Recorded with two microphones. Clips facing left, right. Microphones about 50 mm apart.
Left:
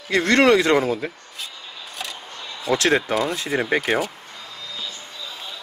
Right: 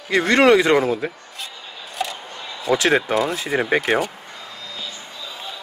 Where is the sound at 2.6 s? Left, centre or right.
Centre.